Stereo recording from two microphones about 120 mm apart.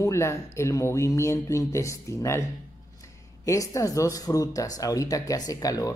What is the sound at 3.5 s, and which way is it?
Speech, 30° left (ahead or behind).